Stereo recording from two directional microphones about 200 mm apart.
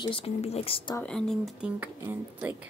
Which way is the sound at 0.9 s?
5° left (ahead or behind).